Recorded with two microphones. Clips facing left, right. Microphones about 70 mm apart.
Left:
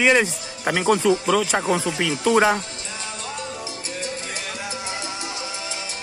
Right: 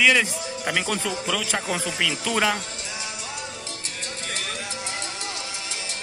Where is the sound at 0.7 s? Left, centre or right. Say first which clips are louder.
Left 7 dB; left.